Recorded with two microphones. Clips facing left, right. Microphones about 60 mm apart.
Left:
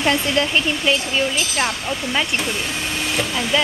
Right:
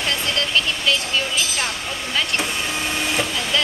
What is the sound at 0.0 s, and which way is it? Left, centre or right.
Speech, left.